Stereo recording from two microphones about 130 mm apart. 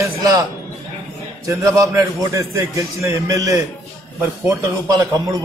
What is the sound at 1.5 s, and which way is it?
A man's voice, 25° right (ahead or behind).